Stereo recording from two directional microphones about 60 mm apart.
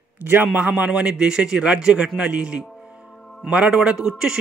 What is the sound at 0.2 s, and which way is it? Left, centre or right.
Speech, right.